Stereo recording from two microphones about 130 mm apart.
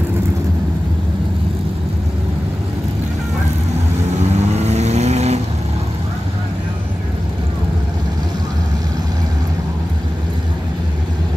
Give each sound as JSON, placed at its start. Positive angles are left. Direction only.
{"t": 4.6, "sound": "vehicle", "side_deg": -55}